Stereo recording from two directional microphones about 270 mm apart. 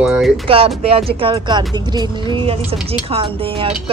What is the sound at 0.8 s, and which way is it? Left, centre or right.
Speech, right.